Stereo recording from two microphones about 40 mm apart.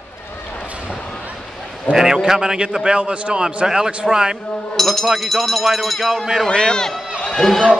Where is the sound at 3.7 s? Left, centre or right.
Centre.